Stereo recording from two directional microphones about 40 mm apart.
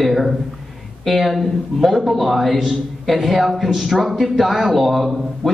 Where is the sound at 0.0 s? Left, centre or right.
Centre.